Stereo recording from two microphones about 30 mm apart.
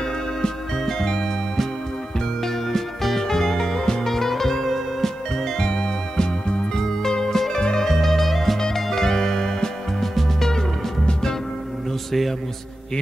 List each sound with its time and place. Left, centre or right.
0.8 s music: centre
5.6 s music: left
7.9 s music: centre
8.7 s music: centre
12.1 s music: centre